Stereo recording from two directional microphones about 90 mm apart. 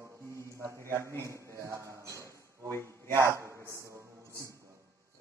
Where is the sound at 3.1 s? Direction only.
30° right (ahead or behind).